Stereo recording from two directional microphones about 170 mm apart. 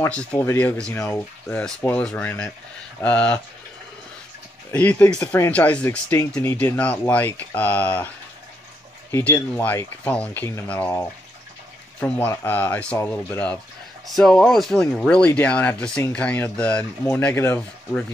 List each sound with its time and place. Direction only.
0.1 s speech: 5° left (ahead or behind)
4.7 s speech: 10° left (ahead or behind)
9.1 s speech: 10° left (ahead or behind)
12.3 s speech: 10° left (ahead or behind)